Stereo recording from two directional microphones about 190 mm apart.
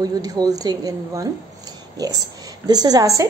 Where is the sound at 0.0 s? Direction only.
20° right (ahead or behind).